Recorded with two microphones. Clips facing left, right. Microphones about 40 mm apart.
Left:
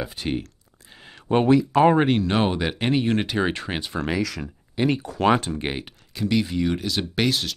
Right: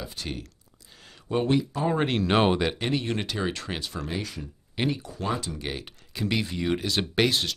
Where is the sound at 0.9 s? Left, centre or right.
Left.